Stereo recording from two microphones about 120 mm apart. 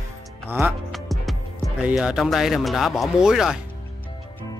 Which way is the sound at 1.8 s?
5° right (ahead or behind).